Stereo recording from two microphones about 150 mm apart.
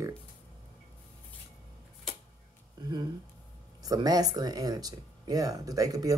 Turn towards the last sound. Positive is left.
turn(degrees=-25)  # may be behind; listen again after turning